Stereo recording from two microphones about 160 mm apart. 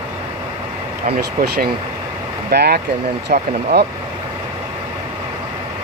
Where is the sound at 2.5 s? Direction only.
90° right.